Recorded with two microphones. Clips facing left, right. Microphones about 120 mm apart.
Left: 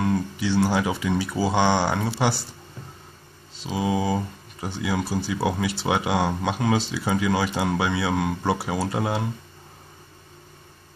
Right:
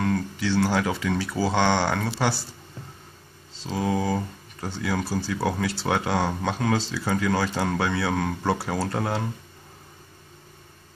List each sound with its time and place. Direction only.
0.0 s speech: 15° left (ahead or behind)
3.5 s speech: 15° left (ahead or behind)